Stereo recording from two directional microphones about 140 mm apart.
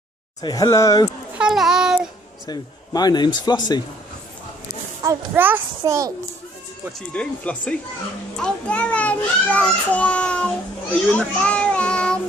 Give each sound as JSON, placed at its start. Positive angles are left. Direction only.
{"t": 0.4, "sound": "speech", "side_deg": 30}
{"t": 1.4, "sound": "a child's voice", "side_deg": -5}
{"t": 2.4, "sound": "speech", "side_deg": 25}
{"t": 5.3, "sound": "a child's voice", "side_deg": -15}
{"t": 7.2, "sound": "a child's voice", "side_deg": 10}
{"t": 11.1, "sound": "child singing", "side_deg": 10}